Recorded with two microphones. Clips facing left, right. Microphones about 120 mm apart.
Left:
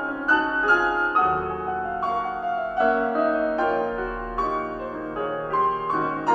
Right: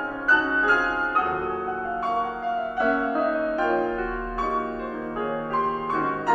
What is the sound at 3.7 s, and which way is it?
Music, 5° left (ahead or behind).